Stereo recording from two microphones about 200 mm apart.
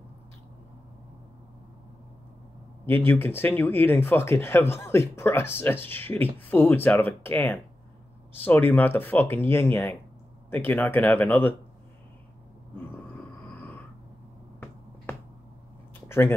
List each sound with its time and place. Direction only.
2.9 s speech: 10° left (ahead or behind)
13.6 s a sound: 10° left (ahead or behind)
16.1 s speech: 10° left (ahead or behind)